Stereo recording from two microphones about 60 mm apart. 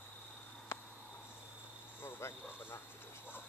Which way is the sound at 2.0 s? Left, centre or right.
Left.